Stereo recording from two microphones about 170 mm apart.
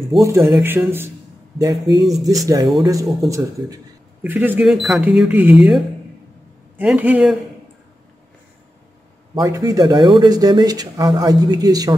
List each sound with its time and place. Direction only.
0.1 s speech: 30° right (ahead or behind)
0.6 s speech: 10° right (ahead or behind)
1.6 s speech: 25° right (ahead or behind); by 5.8 s 5° right (ahead or behind)
6.8 s speech: 10° right (ahead or behind)
9.3 s speech: 20° right (ahead or behind)